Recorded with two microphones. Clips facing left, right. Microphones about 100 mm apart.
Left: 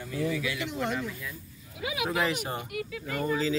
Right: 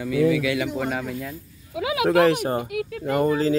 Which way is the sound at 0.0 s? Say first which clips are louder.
Right 10 dB; 90° right.